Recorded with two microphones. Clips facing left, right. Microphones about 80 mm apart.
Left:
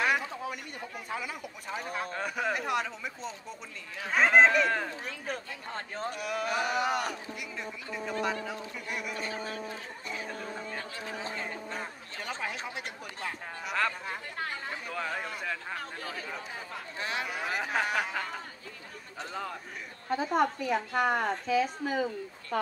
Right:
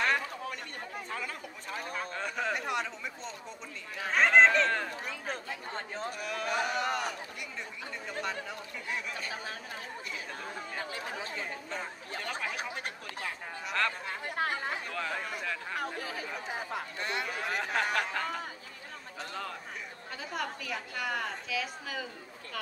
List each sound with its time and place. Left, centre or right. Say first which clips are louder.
0.0 s chatter: left 1 dB; centre
0.4 s speech: left 2 dB; centre
9.3 s speech: left 3 dB; centre
10.2 s speech: left 2 dB; centre
12.2 s a sound: left 1 dB; centre
13.7 s speech: left 1 dB; centre
14.9 s a sound: left 1 dB; centre
15.8 s chatter: right 2 dB; centre
17.0 s a sound: left 3 dB; centre
20.2 s a woman's voice: left 9 dB; left